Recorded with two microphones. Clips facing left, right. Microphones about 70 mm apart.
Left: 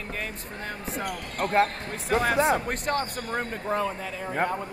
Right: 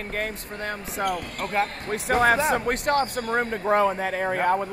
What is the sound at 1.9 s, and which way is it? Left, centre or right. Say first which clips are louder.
Speech: right 5 dB; right.